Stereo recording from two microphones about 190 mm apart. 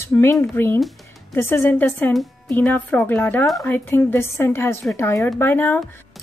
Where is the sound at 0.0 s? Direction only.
15° left (ahead or behind).